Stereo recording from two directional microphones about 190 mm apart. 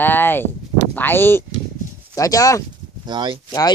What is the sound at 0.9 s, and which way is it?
Speech, 10° left (ahead or behind).